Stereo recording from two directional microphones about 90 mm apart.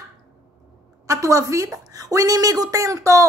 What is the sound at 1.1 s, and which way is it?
A woman's voice, 35° right (ahead or behind).